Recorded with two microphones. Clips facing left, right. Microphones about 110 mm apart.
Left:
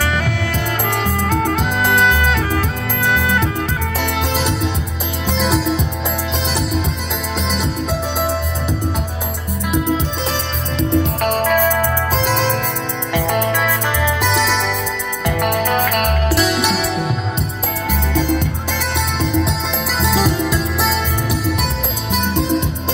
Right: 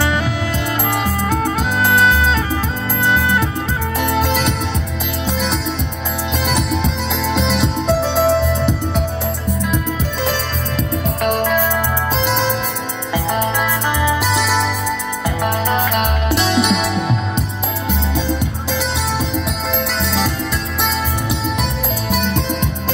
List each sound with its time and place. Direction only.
0.8 s music: 15° right (ahead or behind)
3.0 s music: 15° right (ahead or behind)
10.8 s music: 25° left (ahead or behind)
11.3 s music: 45° left (ahead or behind)
12.2 s music: 15° right (ahead or behind)
16.0 s music: 25° right (ahead or behind)
17.8 s music: 15° right (ahead or behind)
20.0 s music: 15° left (ahead or behind)